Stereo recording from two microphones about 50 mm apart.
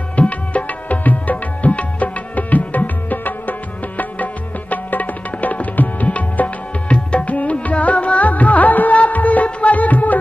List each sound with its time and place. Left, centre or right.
0.1 s music: left
4.0 s tabla: left